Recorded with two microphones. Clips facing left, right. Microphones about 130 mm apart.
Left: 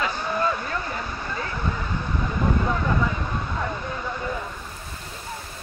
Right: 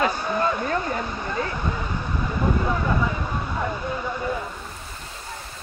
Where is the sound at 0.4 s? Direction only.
30° right (ahead or behind).